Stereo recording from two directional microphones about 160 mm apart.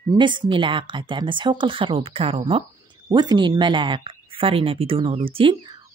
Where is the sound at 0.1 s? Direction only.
30° right (ahead or behind).